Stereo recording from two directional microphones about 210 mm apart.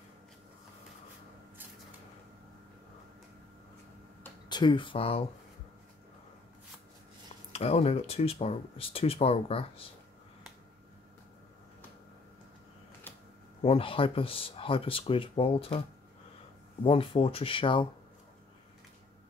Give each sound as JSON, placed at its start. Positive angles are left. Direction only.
{"t": 4.5, "sound": "speech", "side_deg": 20}
{"t": 7.5, "sound": "speech", "side_deg": 30}
{"t": 13.6, "sound": "speech", "side_deg": 25}
{"t": 16.8, "sound": "speech", "side_deg": 25}